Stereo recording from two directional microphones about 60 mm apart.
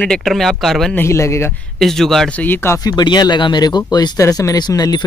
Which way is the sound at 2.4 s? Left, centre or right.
Left.